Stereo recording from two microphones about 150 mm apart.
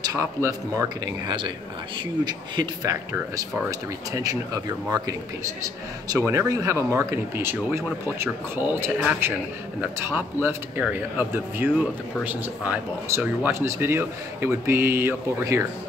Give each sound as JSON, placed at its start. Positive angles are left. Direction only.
{"t": 0.0, "sound": "speech", "side_deg": -20}